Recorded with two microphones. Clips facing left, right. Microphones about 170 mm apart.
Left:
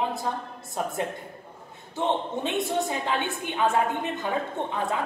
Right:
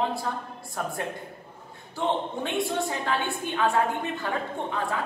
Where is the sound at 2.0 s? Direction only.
20° left (ahead or behind).